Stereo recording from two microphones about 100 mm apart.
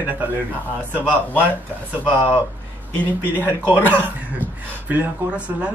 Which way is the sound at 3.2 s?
20° right (ahead or behind).